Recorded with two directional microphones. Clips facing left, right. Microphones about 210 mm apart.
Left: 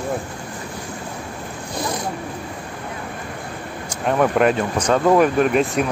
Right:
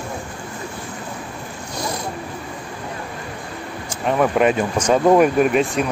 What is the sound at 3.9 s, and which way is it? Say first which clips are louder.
Speech: even; centre (ahead or behind).